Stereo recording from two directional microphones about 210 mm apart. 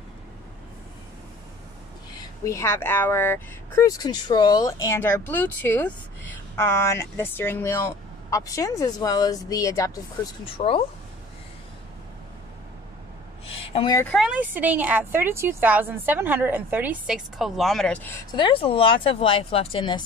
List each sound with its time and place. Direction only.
2.4 s speech: 15° left (ahead or behind)
10.4 s speech: 25° left (ahead or behind)
13.6 s a woman's voice: 25° left (ahead or behind)
14.0 s a woman's voice: centre (ahead or behind)
18.3 s speech: 25° left (ahead or behind)